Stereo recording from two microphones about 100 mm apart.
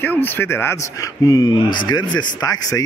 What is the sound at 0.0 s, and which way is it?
Speech, 20° left (ahead or behind).